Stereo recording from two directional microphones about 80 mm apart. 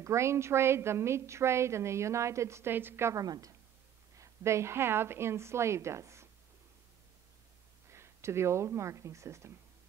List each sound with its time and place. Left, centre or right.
0.0 s a woman's voice: right
3.2 s a woman's voice: right
4.2 s a woman's voice: right
7.9 s speech: right